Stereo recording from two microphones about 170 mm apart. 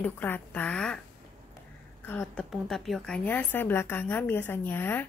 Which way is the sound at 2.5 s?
Centre (ahead or behind).